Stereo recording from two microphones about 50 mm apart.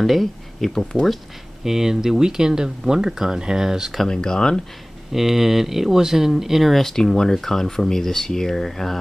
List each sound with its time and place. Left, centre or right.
0.0 s speech: centre
1.6 s speech: centre
4.1 s speech: centre
5.1 s speech: centre